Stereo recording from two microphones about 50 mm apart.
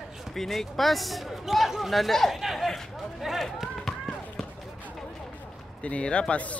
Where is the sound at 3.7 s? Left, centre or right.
Centre.